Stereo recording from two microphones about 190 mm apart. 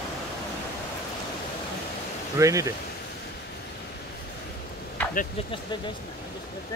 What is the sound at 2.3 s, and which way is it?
Speech, 15° right (ahead or behind).